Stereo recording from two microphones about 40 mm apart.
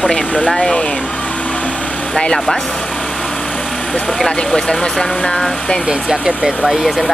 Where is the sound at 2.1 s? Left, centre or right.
Left.